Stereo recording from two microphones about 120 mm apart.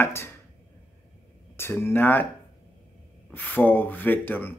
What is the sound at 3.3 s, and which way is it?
A man's voice, 15° left (ahead or behind).